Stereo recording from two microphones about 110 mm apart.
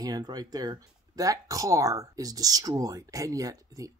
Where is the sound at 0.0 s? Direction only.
35° right (ahead or behind).